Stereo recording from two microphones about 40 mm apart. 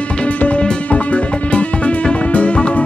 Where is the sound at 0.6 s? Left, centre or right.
Left.